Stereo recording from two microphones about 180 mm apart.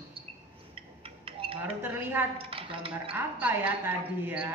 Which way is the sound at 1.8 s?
10° right (ahead or behind).